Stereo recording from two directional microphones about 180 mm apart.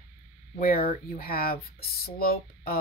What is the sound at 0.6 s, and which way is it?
Speech, 55° left (ahead or behind).